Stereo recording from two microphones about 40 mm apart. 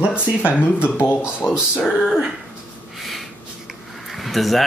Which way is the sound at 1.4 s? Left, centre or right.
Centre.